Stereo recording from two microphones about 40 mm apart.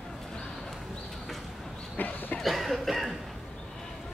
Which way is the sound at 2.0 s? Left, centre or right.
Left.